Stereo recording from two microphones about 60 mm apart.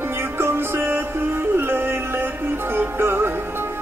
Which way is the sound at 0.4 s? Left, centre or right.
Right.